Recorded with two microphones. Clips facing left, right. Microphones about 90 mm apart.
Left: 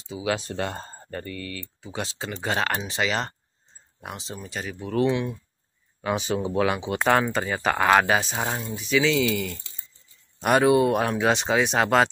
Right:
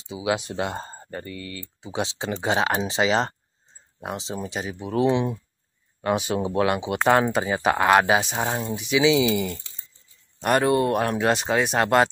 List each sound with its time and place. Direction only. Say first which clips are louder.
0.1 s speech: right 2 dB; 10° right (ahead or behind)
1.8 s speech: right 5 dB; 25° right (ahead or behind)
5.9 s speech: right 2 dB; 5° right (ahead or behind)